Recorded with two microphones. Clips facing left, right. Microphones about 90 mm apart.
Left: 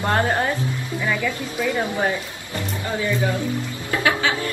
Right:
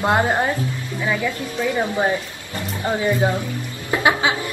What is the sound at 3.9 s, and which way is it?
Music, 20° right (ahead or behind).